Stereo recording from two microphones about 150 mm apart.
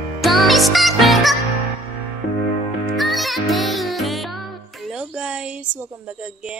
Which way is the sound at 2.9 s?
Centre (ahead or behind).